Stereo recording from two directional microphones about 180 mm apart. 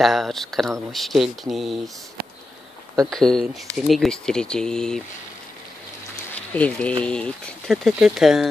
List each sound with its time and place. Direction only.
0.0 s speech: centre (ahead or behind)
3.1 s speech: 5° left (ahead or behind)
6.3 s speech: 5° left (ahead or behind)